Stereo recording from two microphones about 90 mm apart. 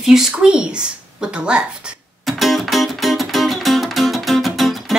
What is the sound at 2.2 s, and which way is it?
Music, centre (ahead or behind).